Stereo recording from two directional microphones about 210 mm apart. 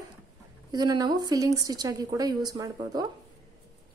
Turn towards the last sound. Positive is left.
turn(degrees=-20)  # may be behind; listen again after turning